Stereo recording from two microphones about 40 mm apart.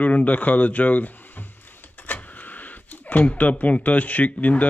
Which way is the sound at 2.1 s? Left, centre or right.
Left.